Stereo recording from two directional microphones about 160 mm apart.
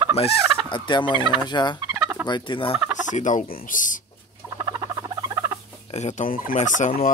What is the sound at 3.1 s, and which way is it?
Speech, 50° left (ahead or behind).